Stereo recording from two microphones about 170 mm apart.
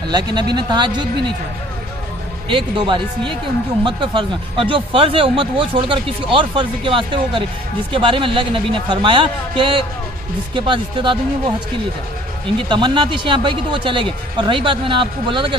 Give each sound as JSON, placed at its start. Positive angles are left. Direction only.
{"t": 0.1, "sound": "speech", "side_deg": -25}
{"t": 2.5, "sound": "a man's voice", "side_deg": -30}
{"t": 12.5, "sound": "speech", "side_deg": -30}